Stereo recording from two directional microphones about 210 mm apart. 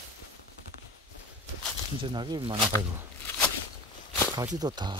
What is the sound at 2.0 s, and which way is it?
Speech, 20° right (ahead or behind).